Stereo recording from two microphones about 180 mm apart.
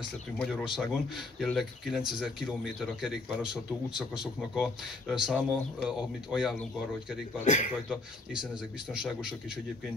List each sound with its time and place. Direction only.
0.4 s speech: 5° left (ahead or behind)
7.4 s speech: 45° left (ahead or behind)
7.9 s speech: 5° right (ahead or behind)